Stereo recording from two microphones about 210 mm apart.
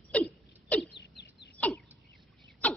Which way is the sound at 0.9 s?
50° left (ahead or behind).